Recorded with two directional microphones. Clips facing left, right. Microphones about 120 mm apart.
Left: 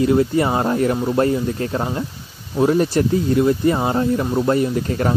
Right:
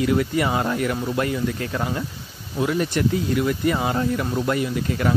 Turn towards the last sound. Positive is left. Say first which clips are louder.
# left 3 dB
turn(degrees=40)  # may be behind; listen again after turning